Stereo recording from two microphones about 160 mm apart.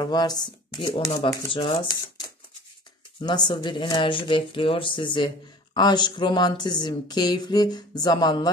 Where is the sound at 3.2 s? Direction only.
25° left (ahead or behind).